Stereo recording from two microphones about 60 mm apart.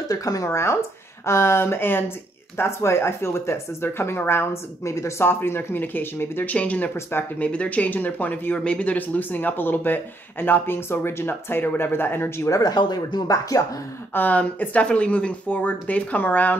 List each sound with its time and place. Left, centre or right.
0.1 s speech: left
0.5 s speech: left
6.5 s speech: left
12.4 s speech: left
14.1 s speech: left